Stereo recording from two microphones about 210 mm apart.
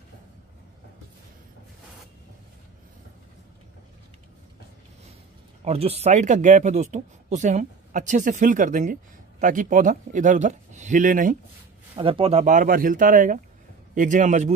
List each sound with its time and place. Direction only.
5.6 s speech: 30° right (ahead or behind)
11.9 s speech: 25° right (ahead or behind)